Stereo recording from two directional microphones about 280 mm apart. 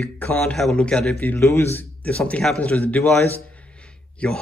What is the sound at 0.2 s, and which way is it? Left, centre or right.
A man's voice, centre.